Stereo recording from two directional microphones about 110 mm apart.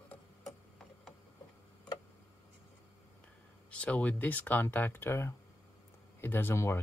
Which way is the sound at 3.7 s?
10° left (ahead or behind).